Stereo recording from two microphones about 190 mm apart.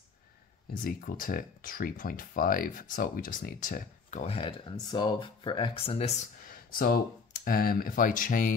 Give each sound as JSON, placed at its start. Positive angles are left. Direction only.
{"t": 0.8, "sound": "speech", "side_deg": 45}